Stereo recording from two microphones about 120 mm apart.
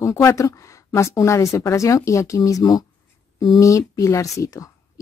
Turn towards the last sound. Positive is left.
turn(degrees=30)  # may be behind; listen again after turning